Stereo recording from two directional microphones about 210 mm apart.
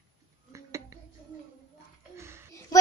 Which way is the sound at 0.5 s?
15° right (ahead or behind).